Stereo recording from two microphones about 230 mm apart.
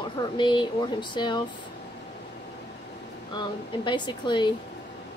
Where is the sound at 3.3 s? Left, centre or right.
Centre.